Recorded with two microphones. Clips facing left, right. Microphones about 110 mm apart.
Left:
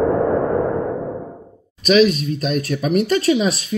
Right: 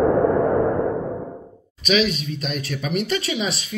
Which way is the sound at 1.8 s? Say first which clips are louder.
Left 7 dB; 45° left (ahead or behind).